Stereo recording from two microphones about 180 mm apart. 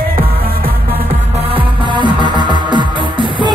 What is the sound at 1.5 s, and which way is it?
Music, 25° right (ahead or behind).